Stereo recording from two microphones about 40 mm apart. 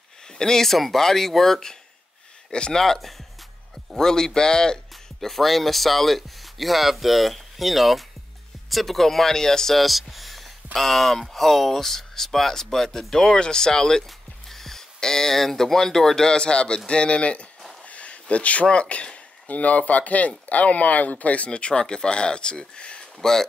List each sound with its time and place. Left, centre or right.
0.3 s speech: centre
2.5 s speech: left
2.8 s speech: centre
5.2 s speech: centre
9.8 s speech: centre; by 21.5 s left
21.5 s speech: left